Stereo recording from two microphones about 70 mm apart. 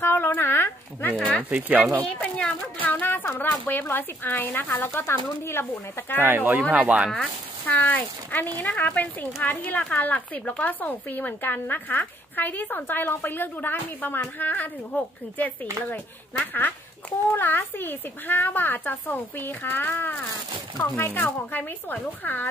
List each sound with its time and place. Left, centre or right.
0.0 s a sound: left
1.5 s speech: centre
2.1 s a woman's voice: left
6.2 s speech: right
6.7 s speech: centre
7.6 s a woman's voice: left